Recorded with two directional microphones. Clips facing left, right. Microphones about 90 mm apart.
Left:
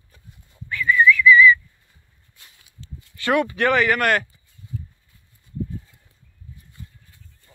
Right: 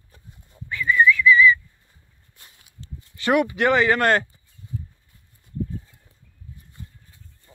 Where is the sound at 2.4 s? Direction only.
35° right (ahead or behind).